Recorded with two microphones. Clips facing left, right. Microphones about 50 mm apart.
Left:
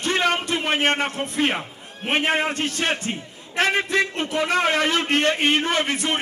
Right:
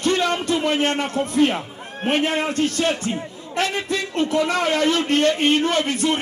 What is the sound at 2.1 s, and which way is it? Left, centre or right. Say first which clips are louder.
A man's voice: even; left.